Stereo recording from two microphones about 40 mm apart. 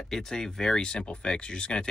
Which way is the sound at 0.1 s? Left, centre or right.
Centre.